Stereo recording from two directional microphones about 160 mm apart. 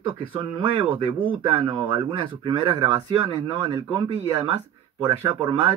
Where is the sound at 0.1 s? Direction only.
30° right (ahead or behind).